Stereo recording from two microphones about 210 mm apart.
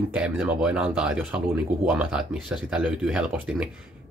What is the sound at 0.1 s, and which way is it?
Speech, 5° right (ahead or behind).